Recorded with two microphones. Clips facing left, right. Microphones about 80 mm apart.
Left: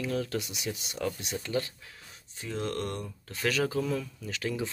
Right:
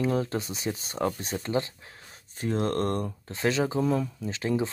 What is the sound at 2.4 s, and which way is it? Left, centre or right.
Speech, right.